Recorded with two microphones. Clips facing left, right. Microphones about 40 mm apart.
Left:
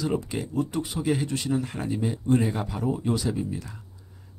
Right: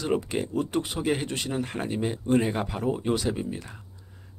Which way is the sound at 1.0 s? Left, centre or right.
Right.